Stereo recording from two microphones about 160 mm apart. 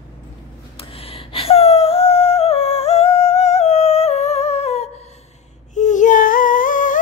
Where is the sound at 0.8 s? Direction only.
35° left (ahead or behind).